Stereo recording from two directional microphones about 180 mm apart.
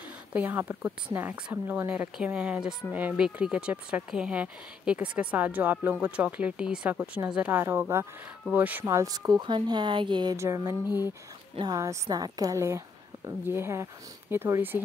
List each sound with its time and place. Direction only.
0.3 s speech: 10° right (ahead or behind)